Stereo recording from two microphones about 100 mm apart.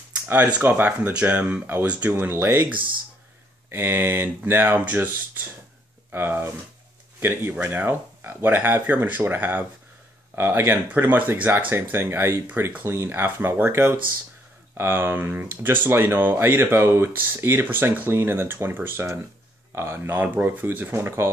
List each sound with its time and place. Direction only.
0.3 s speech: 15° right (ahead or behind)